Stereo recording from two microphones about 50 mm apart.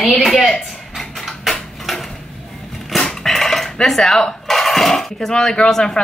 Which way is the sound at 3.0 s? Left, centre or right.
Centre.